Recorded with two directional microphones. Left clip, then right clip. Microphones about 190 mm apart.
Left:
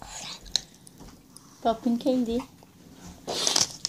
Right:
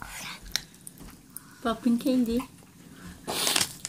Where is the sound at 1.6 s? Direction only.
20° right (ahead or behind).